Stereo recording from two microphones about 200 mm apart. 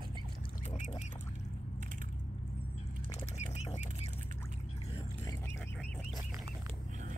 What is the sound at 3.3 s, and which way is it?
Bird flight, 35° left (ahead or behind).